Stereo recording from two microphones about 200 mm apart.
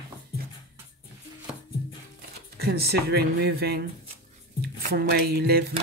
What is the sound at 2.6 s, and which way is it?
Speech, 50° right (ahead or behind).